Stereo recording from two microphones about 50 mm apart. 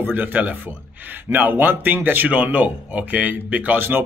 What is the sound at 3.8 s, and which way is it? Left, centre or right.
Speech, right.